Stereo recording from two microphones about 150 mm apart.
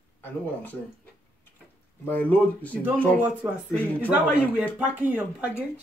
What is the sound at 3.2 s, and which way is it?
Speech, 10° right (ahead or behind).